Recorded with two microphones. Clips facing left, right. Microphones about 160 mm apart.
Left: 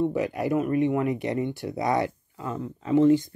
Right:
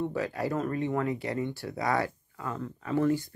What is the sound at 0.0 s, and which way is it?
Speech, 20° left (ahead or behind).